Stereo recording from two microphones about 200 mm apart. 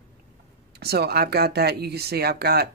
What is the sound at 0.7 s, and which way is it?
Speech, 55° right (ahead or behind).